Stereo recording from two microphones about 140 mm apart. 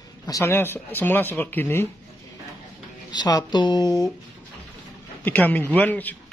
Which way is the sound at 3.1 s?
30° left (ahead or behind).